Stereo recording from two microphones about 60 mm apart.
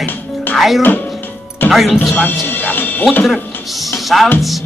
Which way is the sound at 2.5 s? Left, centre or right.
Left.